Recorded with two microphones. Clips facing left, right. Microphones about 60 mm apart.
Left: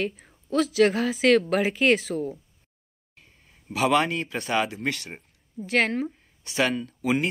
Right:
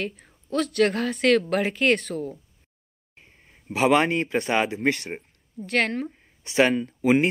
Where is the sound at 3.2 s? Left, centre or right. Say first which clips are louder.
Right 2 dB; right.